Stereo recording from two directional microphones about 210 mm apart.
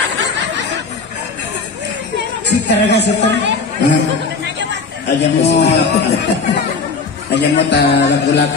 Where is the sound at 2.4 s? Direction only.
55° left (ahead or behind).